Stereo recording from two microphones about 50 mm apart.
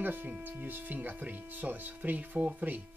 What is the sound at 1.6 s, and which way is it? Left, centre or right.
Speech, right.